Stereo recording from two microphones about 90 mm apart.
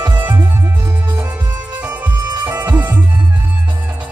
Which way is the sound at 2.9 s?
20° right (ahead or behind).